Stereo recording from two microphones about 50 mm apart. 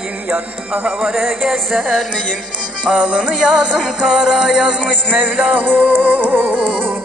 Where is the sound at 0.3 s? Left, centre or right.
Right.